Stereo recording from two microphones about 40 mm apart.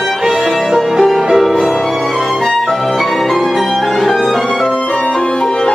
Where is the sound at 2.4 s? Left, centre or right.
Centre.